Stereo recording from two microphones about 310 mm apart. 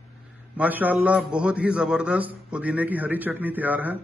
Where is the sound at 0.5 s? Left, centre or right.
Centre.